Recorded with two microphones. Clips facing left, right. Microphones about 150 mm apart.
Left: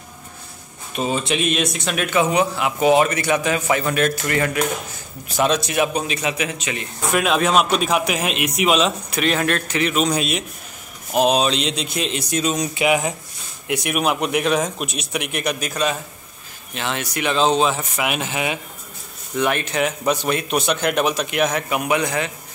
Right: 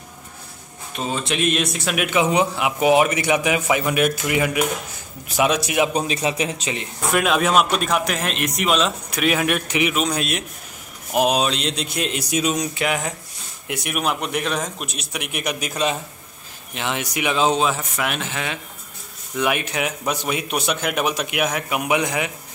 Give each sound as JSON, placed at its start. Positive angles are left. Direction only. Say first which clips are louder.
{"t": 0.9, "sound": "speech", "louder": "left 3 dB", "side_deg": 5}
{"t": 2.0, "sound": "a man's voice", "louder": "even", "side_deg": -15}
{"t": 5.9, "sound": "a man's voice", "louder": "right 1 dB", "side_deg": -35}
{"t": 7.1, "sound": "speech", "louder": "left 1 dB", "side_deg": 0}
{"t": 9.9, "sound": "speech", "louder": "left 3 dB", "side_deg": 0}
{"t": 12.7, "sound": "a man's voice", "louder": "left 4 dB", "side_deg": 10}
{"t": 19.3, "sound": "a man's voice", "louder": "left 2 dB", "side_deg": -10}